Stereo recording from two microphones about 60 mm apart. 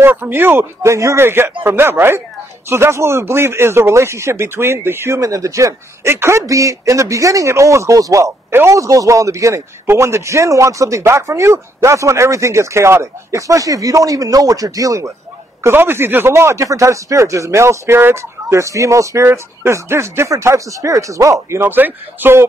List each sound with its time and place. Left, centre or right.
0.0 s speech: right
0.8 s a man's voice: right
1.2 s speech: right
5.2 s a man's voice: right
6.1 s speech: right
6.4 s a man's voice: right
8.5 s speech: right
8.7 s a man's voice: right
15.6 s speech: right
16.3 s a man's voice: right
21.5 s speech: right